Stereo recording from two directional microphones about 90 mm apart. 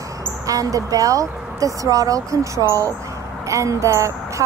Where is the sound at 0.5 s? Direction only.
40° right (ahead or behind).